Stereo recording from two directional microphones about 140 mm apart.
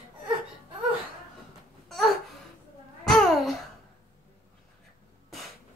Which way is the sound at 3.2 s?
Centre (ahead or behind).